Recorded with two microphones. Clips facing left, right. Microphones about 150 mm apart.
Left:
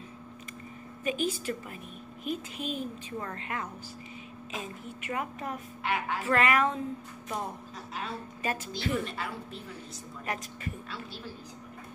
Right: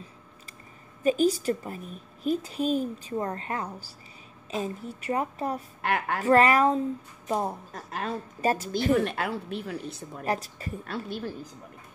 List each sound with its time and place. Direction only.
1.0 s a woman's voice: 40° right (ahead or behind)
5.8 s a woman's voice: 50° right (ahead or behind)
6.2 s a woman's voice: 35° right (ahead or behind)
7.7 s a woman's voice: 50° right (ahead or behind)
10.2 s a woman's voice: 35° right (ahead or behind)
10.9 s a woman's voice: 55° right (ahead or behind)